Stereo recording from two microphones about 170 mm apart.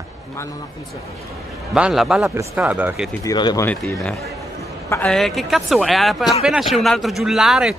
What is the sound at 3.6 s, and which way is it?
Speech, 5° left (ahead or behind).